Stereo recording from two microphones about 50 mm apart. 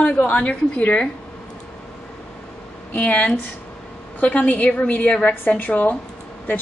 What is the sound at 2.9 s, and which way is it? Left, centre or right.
A woman's voice, left.